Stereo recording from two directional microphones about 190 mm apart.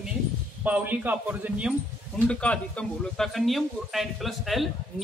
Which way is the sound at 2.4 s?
5° left (ahead or behind).